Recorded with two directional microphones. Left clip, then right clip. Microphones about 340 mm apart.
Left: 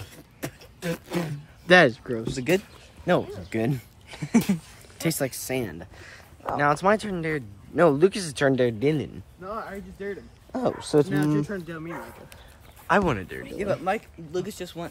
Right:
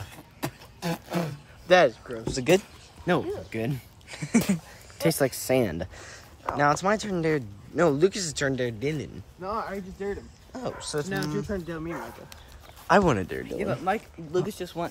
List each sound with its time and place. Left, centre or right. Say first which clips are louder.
0.0 s a sound: right 2 dB; centre
1.7 s speech: left 2 dB; left
2.3 s speech: right 4 dB; centre
6.0 s speech: left 6 dB; centre
9.4 s speech: right 3 dB; right
10.7 s speech: left 9 dB; centre
11.4 s speech: right 1 dB; centre